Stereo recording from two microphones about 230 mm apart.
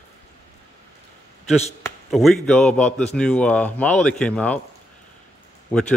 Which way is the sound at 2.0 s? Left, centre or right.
Centre.